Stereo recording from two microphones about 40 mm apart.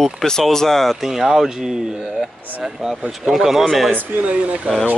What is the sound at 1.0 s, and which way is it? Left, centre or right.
Speech, centre.